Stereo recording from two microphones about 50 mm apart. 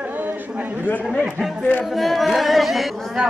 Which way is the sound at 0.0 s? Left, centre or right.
Right.